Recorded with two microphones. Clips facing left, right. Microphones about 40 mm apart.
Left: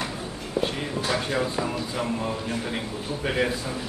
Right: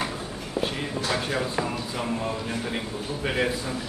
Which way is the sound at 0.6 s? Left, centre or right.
Centre.